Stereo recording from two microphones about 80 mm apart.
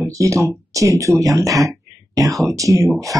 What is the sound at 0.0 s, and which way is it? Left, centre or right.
Speech, right.